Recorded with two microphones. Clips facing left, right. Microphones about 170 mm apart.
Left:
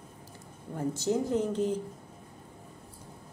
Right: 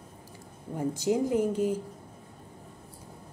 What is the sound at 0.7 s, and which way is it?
A woman's voice, 10° right (ahead or behind).